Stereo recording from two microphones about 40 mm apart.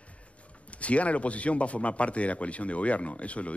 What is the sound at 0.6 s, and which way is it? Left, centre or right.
A man's voice, left.